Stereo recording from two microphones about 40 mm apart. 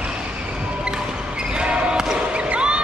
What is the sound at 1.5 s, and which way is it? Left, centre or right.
Basketball bounce, right.